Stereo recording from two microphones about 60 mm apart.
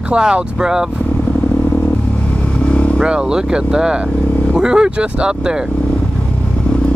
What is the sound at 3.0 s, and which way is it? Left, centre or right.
Speech, centre.